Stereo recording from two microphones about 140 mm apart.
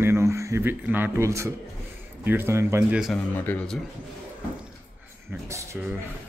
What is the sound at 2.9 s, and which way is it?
Speech, 5° right (ahead or behind).